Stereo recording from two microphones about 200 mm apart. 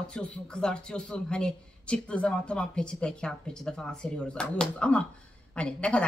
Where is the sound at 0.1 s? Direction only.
5° left (ahead or behind).